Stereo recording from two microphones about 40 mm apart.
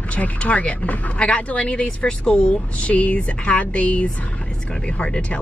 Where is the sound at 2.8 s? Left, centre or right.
Left.